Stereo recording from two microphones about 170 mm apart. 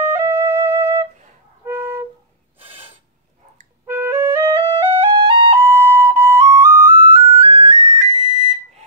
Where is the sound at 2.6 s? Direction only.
35° right (ahead or behind).